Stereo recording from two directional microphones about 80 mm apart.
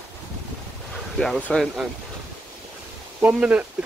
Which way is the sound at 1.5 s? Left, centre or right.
Centre.